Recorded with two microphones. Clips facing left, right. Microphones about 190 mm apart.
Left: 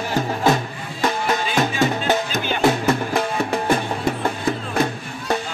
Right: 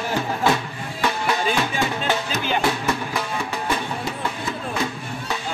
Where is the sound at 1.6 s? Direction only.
45° left (ahead or behind).